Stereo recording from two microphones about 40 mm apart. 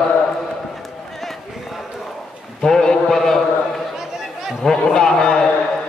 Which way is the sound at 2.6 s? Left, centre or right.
Centre.